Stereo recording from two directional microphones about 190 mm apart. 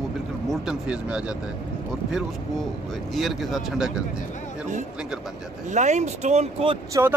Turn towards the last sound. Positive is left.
turn(degrees=-20)  # may be behind; listen again after turning